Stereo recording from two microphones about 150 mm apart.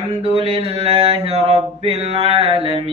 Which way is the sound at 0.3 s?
40° right (ahead or behind).